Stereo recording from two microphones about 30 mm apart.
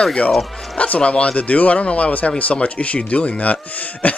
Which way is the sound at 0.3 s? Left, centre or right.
Centre.